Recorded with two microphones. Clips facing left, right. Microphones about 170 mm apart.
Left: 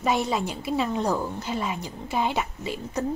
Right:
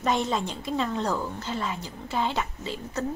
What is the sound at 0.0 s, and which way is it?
A woman's voice, 10° left (ahead or behind).